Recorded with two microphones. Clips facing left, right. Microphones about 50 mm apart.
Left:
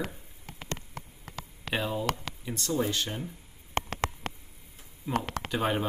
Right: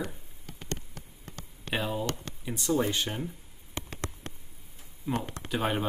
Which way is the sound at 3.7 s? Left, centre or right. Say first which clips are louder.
Left 8 dB; left.